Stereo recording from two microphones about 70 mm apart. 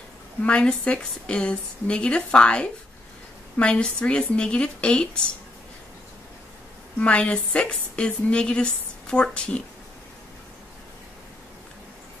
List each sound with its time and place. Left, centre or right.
0.4 s a woman's voice: centre
7.0 s a woman's voice: centre